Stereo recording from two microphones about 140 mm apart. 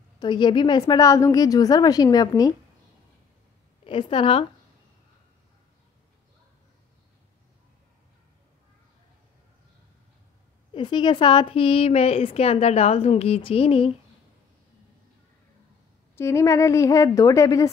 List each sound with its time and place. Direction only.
0.2 s a woman's voice: 35° left (ahead or behind)
3.8 s a woman's voice: 40° left (ahead or behind)
10.7 s a woman's voice: 35° left (ahead or behind)
16.2 s a woman's voice: 20° left (ahead or behind)